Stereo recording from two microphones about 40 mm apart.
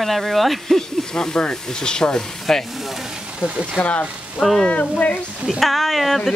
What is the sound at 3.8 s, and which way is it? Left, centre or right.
Speech, left.